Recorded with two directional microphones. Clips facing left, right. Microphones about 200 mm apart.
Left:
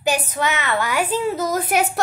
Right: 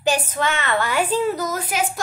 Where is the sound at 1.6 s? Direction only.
60° left (ahead or behind).